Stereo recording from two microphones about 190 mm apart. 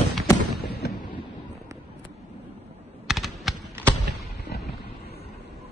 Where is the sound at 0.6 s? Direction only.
55° left (ahead or behind).